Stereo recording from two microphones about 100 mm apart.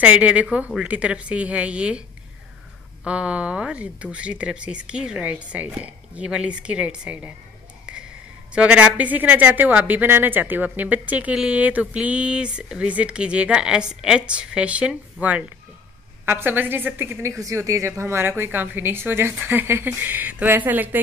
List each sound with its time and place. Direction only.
0.0 s speech: 15° right (ahead or behind)
3.1 s speech: 10° right (ahead or behind)
8.5 s a woman's voice: 15° right (ahead or behind)
17.4 s a woman's voice: 30° right (ahead or behind)